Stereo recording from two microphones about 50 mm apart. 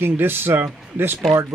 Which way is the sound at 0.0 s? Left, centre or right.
Right.